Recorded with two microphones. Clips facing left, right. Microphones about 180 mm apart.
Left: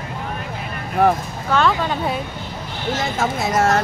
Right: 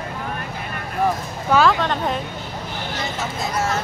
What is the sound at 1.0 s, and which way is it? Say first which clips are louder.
Speech: left 5 dB; 65° left (ahead or behind).